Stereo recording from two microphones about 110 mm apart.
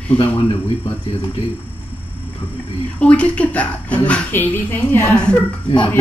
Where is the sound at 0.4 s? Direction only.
50° left (ahead or behind).